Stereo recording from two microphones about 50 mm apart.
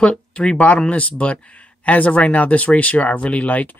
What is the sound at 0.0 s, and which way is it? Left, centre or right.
Speech, left.